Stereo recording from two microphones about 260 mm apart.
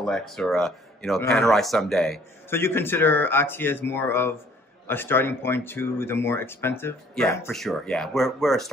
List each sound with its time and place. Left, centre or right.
0.0 s speech: centre